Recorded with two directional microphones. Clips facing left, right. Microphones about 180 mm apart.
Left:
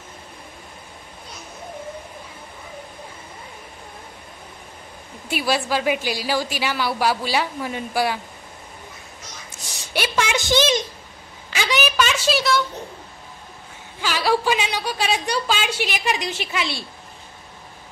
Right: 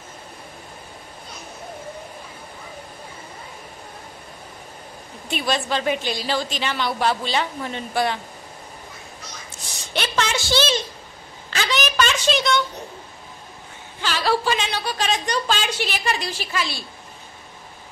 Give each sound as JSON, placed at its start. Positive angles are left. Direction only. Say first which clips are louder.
{"t": 5.3, "sound": "a woman's voice", "louder": "left 2 dB", "side_deg": 10}
{"t": 9.9, "sound": "a sound", "louder": "left 1 dB", "side_deg": 10}
{"t": 14.0, "sound": "a woman's voice", "louder": "left 1 dB", "side_deg": 10}